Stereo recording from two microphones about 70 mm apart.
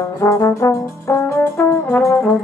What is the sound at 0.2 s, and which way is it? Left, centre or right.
Brass instrument, left.